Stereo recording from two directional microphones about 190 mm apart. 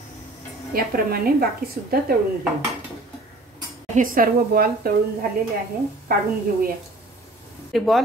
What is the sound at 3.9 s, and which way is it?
Cutlery, 45° right (ahead or behind).